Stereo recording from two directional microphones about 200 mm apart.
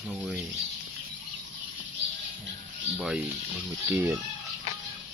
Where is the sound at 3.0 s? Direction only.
5° right (ahead or behind).